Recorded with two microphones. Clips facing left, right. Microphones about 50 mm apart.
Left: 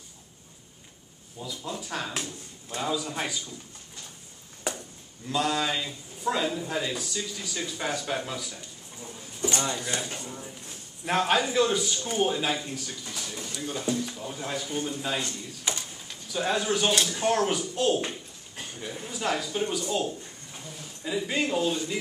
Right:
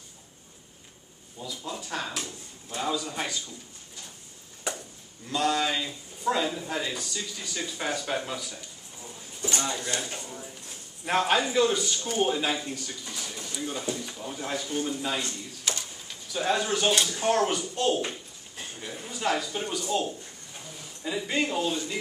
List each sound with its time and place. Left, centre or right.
1.4 s a man's voice: centre
5.3 s a man's voice: centre
11.1 s a man's voice: centre
15.7 s a sound: centre
16.1 s a man's voice: centre